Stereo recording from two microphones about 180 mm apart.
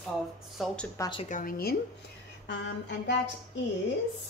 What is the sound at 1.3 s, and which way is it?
Speech, 50° left (ahead or behind).